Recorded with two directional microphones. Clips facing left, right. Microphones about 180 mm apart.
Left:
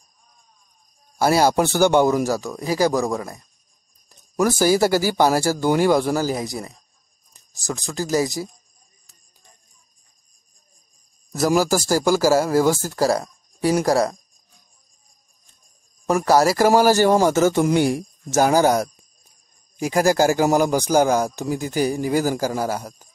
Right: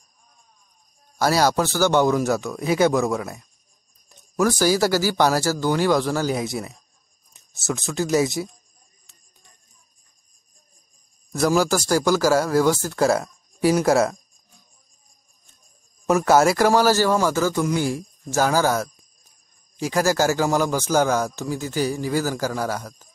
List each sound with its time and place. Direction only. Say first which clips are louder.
1.2 s a man's voice: left 2 dB; 10° left (ahead or behind); by 3.4 s 5° right (ahead or behind)
4.4 s a man's voice: left 2 dB; 5° left (ahead or behind)
11.3 s a man's voice: left 1 dB; 5° left (ahead or behind)
13.8 s speech: even; 5° right (ahead or behind)
16.1 s a man's voice: even; centre (ahead or behind); by 17.1 s 15° left (ahead or behind)
17.1 s a man's voice: left 4 dB; 25° left (ahead or behind)
19.8 s a man's voice: left 3 dB; 15° left (ahead or behind)